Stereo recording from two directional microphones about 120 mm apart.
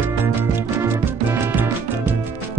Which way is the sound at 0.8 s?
15° right (ahead or behind).